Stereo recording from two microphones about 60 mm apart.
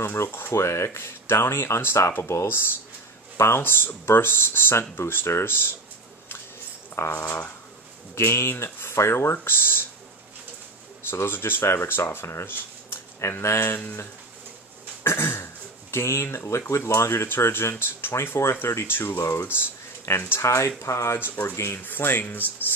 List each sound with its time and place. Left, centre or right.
0.0 s speech: left
7.0 s speech: left
8.1 s speech: left
11.1 s speech: left
15.0 s a sound: left
15.9 s speech: left
19.1 s speech: left
21.2 s speech: left